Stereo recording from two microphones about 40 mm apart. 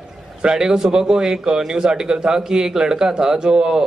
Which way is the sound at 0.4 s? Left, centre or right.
Centre.